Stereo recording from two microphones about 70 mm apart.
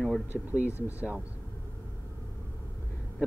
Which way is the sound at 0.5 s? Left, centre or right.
Right.